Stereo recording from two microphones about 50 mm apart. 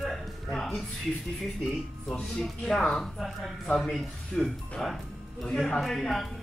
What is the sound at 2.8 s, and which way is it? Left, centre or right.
Speech, centre.